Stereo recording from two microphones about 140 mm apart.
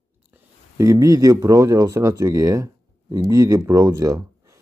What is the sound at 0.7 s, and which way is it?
Speech, 25° right (ahead or behind).